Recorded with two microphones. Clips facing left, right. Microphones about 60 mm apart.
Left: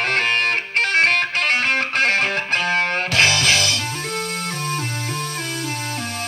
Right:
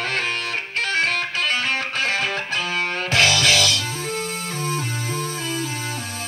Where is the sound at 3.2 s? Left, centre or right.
Left.